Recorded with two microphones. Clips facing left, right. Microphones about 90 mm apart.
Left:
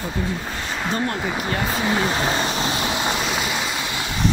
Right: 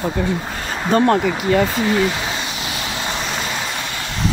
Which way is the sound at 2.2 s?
40° left (ahead or behind).